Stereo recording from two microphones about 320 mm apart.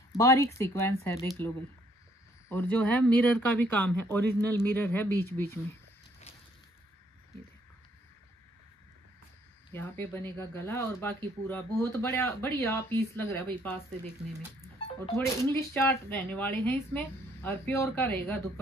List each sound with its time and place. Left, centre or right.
0.1 s speech: centre
9.7 s speech: centre
14.6 s speech: centre